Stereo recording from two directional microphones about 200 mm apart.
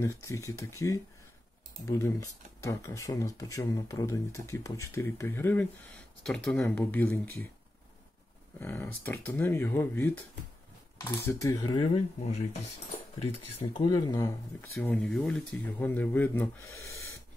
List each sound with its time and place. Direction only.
0.0 s speech: 15° left (ahead or behind)
8.5 s speech: 10° left (ahead or behind); by 13.8 s 30° left (ahead or behind)
13.8 s speech: 20° left (ahead or behind)
14.8 s speech: 5° left (ahead or behind)